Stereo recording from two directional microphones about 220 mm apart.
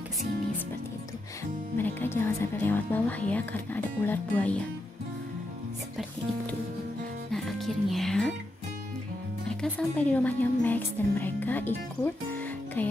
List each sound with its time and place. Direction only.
1.8 s speech: 10° left (ahead or behind)
7.3 s music: centre (ahead or behind)
9.6 s a woman's voice: 5° left (ahead or behind)